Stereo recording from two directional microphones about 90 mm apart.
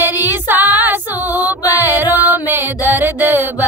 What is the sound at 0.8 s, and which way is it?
Female singing, 20° right (ahead or behind).